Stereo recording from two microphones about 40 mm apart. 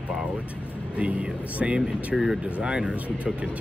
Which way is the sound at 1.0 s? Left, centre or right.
Right.